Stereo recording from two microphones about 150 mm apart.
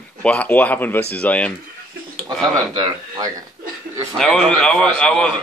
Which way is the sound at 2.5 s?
30° right (ahead or behind).